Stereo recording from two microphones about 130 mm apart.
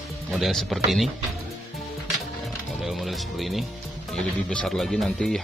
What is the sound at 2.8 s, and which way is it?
Speech, centre (ahead or behind).